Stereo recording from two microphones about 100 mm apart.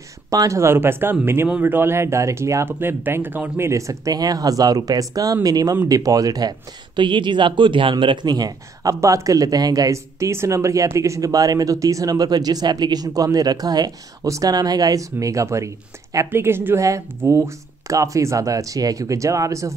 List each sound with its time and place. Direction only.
0.3 s speech: 35° right (ahead or behind)
7.0 s speech: 50° right (ahead or behind); by 19.7 s 30° right (ahead or behind)